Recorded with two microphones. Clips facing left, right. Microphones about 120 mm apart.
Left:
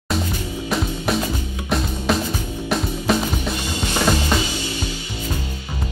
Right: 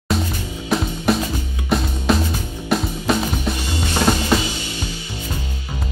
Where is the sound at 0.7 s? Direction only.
Centre (ahead or behind).